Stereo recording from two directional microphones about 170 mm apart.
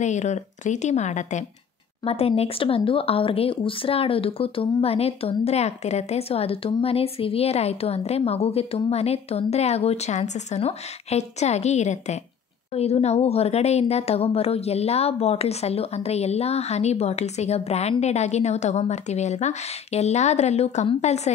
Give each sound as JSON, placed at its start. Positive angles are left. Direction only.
{"t": 0.0, "sound": "a woman's voice", "side_deg": 45}